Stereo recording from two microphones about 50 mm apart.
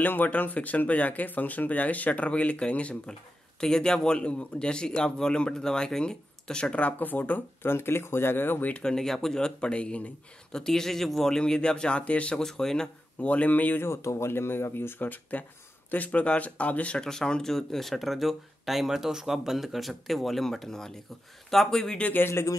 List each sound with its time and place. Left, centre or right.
0.0 s speech: left
3.6 s a man's voice: centre; by 7.4 s left
7.6 s speech: left
8.8 s a man's voice: centre
10.5 s a man's voice: centre; by 12.4 s left
12.4 s speech: centre
13.3 s speech: left
13.7 s speech: left
17.0 s a man's voice: centre
22.1 s speech: left